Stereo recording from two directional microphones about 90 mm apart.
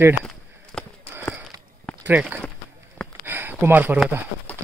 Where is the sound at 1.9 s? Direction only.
10° left (ahead or behind).